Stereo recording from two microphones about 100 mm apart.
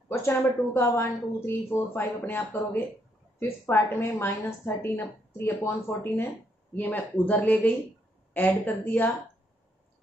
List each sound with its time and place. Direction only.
0.1 s a woman's voice: 25° left (ahead or behind)